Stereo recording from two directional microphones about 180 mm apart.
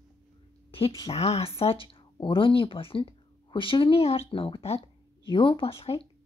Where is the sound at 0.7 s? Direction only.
30° left (ahead or behind).